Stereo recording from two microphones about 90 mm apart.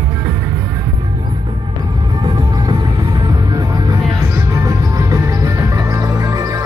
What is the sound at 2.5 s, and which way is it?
Music, 35° right (ahead or behind).